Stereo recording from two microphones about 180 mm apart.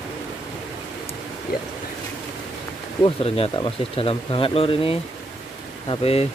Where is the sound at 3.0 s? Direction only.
35° left (ahead or behind).